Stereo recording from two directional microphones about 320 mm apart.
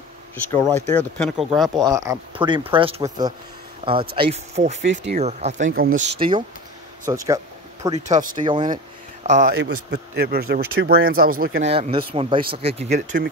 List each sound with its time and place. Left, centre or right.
0.9 s speech: centre
1.8 s speech: centre
7.9 s speech: right